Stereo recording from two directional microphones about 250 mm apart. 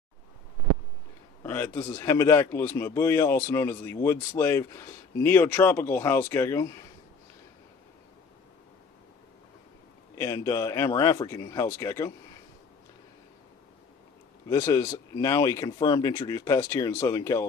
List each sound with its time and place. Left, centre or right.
1.4 s speech: centre
10.1 s speech: centre
14.5 s speech: centre